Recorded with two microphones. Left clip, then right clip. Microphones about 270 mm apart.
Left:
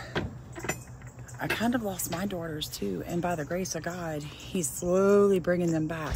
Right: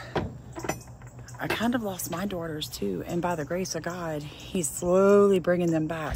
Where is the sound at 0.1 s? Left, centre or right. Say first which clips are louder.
Right 4 dB; right.